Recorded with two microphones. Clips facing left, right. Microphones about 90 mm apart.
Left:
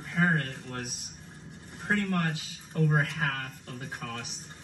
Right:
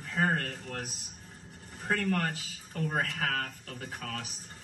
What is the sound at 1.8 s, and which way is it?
Speech, 35° left (ahead or behind).